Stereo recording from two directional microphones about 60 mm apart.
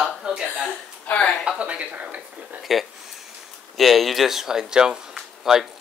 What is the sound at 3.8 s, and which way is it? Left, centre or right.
Speech, centre.